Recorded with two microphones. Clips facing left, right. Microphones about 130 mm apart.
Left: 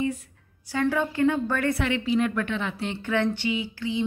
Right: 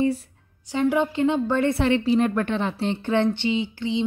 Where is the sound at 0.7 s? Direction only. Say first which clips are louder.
Right 3 dB; 20° right (ahead or behind).